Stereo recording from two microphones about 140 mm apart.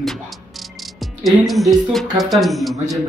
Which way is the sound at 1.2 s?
Centre (ahead or behind).